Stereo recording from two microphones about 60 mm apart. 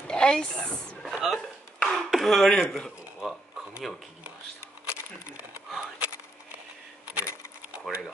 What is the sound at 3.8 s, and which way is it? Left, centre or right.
Speech, centre.